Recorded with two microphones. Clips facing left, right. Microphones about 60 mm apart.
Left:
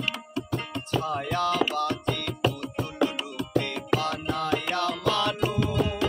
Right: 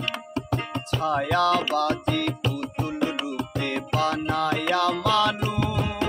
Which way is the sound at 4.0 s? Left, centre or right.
Right.